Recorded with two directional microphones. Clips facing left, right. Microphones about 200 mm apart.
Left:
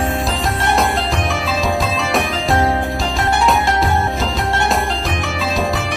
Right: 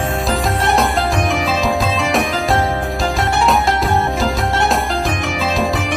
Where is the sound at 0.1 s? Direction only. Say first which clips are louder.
Right 2 dB; centre (ahead or behind).